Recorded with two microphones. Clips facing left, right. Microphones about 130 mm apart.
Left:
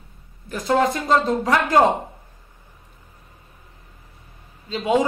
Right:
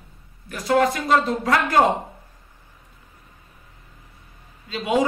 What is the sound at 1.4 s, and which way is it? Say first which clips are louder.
Speech: left 1 dB; 15° left (ahead or behind).